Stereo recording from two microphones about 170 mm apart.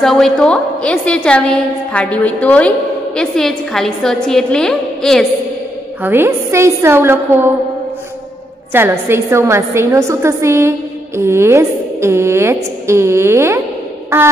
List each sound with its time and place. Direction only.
0.0 s a woman's voice: centre (ahead or behind)
6.0 s a woman's voice: 15° right (ahead or behind)
8.7 s a woman's voice: 15° right (ahead or behind)